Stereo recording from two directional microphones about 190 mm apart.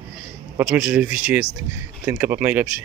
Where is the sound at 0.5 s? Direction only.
5° right (ahead or behind).